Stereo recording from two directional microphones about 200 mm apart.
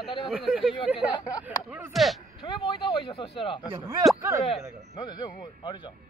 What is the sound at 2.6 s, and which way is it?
Speech, 25° left (ahead or behind).